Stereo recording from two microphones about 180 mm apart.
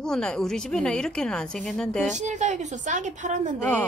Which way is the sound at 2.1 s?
40° right (ahead or behind).